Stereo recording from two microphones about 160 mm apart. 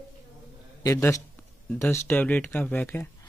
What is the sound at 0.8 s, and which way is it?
A man's voice, 20° left (ahead or behind).